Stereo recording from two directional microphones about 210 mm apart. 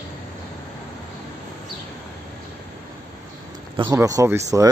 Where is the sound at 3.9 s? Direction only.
15° right (ahead or behind).